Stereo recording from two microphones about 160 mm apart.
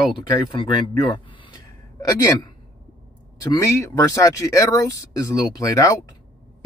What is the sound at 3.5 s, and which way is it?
Speech, 20° left (ahead or behind).